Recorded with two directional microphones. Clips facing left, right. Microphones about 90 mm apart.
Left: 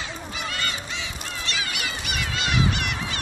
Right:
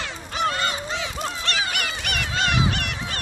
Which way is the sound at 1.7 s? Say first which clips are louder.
Right 3 dB; 55° right (ahead or behind).